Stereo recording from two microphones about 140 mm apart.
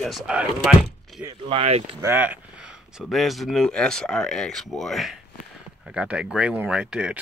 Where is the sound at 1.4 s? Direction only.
45° right (ahead or behind).